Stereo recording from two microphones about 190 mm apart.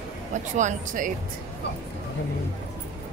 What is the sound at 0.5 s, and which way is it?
Speech, 40° right (ahead or behind).